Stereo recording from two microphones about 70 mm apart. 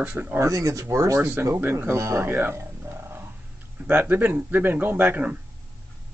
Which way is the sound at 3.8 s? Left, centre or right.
Right.